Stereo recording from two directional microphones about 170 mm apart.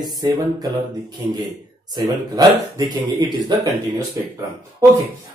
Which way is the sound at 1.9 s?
20° right (ahead or behind).